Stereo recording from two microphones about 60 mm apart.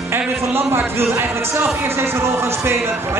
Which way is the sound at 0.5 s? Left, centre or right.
Right.